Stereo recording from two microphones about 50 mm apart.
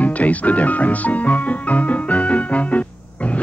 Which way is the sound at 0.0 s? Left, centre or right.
Left.